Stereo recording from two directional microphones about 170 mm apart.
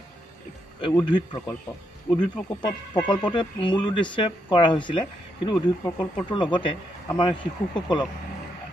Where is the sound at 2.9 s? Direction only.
30° left (ahead or behind).